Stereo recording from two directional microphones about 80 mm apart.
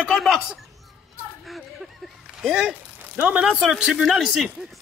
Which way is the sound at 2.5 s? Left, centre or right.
Centre.